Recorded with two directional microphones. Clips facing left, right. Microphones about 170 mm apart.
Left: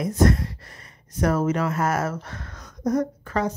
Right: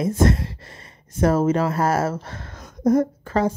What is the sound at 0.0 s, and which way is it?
A woman's voice, 25° right (ahead or behind).